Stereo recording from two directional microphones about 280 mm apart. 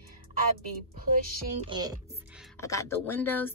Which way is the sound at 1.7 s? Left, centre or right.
Centre.